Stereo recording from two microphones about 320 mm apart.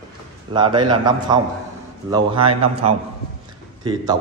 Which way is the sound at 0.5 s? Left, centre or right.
Centre.